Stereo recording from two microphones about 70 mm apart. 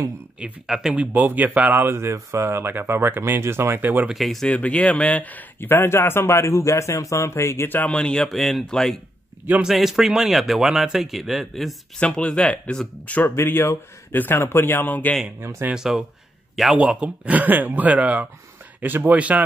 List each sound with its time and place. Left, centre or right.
0.4 s speech: centre
0.9 s speech: right
4.1 s speech: centre
4.5 s speech: centre
7.9 s speech: centre
8.3 s speech: centre
9.6 s speech: centre
12.0 s speech: centre
13.4 s speech: left
15.7 s speech: centre